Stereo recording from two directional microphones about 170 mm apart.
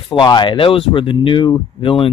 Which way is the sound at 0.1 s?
25° left (ahead or behind).